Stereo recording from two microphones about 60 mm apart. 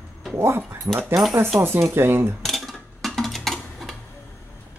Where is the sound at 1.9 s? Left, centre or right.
Right.